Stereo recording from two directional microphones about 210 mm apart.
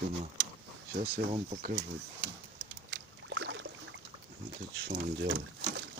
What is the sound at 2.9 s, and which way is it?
Boat, 65° right (ahead or behind).